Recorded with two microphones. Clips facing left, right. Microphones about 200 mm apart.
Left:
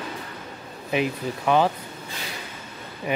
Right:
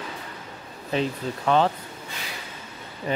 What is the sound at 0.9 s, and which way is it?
Speech, 10° left (ahead or behind).